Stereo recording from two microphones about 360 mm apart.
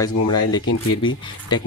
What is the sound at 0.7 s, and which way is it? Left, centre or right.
Speech, left.